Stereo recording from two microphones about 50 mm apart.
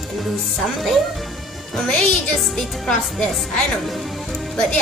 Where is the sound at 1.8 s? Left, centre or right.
Centre.